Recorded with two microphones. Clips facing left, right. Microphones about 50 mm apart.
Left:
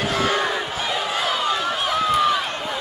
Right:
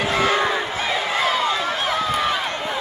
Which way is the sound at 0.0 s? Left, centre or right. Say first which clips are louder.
Right 2 dB; right.